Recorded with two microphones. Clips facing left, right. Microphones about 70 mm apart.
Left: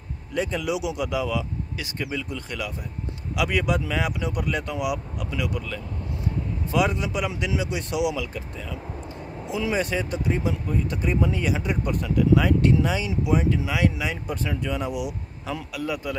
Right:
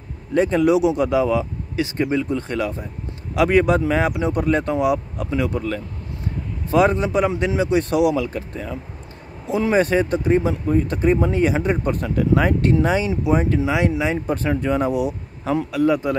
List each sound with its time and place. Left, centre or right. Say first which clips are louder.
0.3 s speech: right 10 dB; right
13.7 s a man's voice: right 5 dB; right